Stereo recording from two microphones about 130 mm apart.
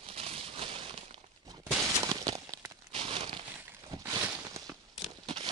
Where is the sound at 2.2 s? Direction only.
25° right (ahead or behind).